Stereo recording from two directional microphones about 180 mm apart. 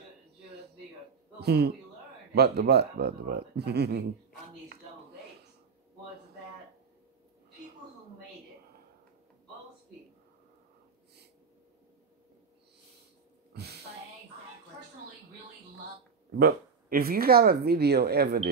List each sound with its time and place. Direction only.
1.4 s a man's voice: 65° right (ahead or behind)
13.5 s a sound: 65° right (ahead or behind)
16.3 s speech: 55° right (ahead or behind)